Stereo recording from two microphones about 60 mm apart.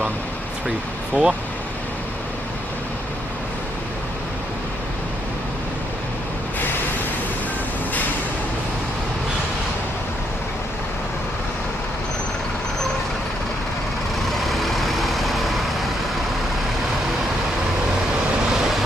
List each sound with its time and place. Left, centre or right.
0.7 s speech: centre
14.4 s vehicle: centre